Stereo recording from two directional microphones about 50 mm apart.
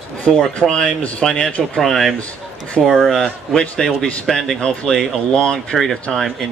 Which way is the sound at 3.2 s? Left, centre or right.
Left.